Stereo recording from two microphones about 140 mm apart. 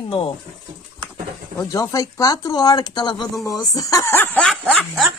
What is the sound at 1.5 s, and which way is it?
Speech, 25° left (ahead or behind).